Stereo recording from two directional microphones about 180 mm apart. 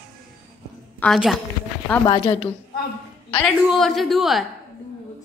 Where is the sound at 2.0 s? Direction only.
25° left (ahead or behind).